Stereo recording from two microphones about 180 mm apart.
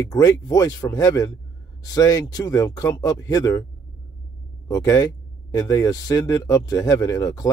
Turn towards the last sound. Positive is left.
turn(degrees=20)  # may be behind; listen again after turning